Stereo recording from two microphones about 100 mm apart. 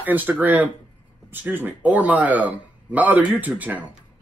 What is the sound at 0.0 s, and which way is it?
Speech, 15° right (ahead or behind).